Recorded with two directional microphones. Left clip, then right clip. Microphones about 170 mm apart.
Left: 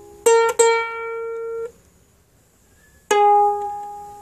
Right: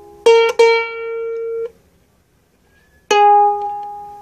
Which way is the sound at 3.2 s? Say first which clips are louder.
Right 4 dB; 30° right (ahead or behind).